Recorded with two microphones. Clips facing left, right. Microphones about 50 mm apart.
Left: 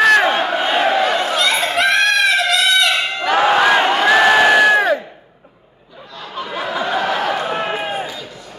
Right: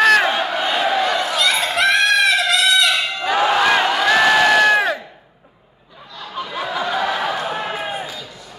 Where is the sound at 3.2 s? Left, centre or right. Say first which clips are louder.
Left 3 dB; left.